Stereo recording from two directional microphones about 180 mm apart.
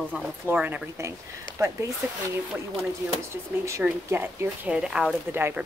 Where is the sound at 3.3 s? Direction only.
15° right (ahead or behind).